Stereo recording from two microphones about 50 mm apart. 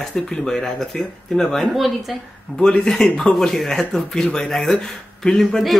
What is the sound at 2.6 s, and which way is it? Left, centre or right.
Speech, centre.